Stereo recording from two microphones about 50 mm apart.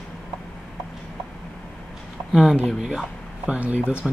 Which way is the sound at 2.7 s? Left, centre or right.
Centre.